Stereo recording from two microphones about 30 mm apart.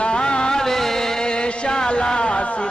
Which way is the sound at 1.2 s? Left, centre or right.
Left.